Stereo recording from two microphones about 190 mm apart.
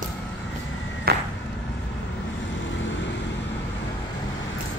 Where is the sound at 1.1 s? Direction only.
55° right (ahead or behind).